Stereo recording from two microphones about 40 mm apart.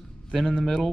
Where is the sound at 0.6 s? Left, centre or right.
Centre.